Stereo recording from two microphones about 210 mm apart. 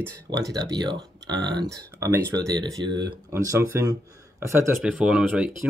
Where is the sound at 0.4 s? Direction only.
20° right (ahead or behind).